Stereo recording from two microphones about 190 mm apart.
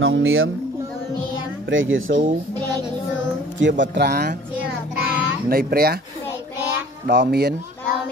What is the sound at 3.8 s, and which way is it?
Speech, 65° right (ahead or behind).